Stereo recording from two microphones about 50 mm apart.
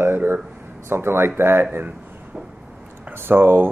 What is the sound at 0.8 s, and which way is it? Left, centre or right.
Speech, right.